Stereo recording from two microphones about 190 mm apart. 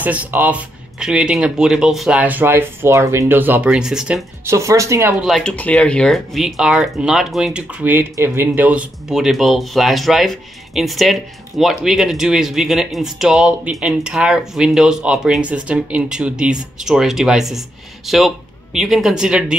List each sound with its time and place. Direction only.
0.0 s speech: 10° right (ahead or behind)
4.5 s speech: 15° right (ahead or behind)
5.2 s speech: centre (ahead or behind)